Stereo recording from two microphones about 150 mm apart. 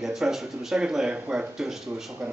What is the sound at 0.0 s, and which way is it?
Speech, centre (ahead or behind).